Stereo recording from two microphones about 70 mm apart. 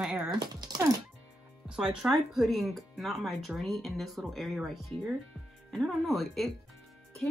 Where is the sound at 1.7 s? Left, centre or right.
Centre.